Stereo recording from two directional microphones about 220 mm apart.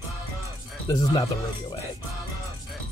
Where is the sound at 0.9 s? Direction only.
15° left (ahead or behind).